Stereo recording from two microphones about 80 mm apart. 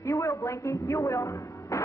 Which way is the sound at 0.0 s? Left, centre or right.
Left.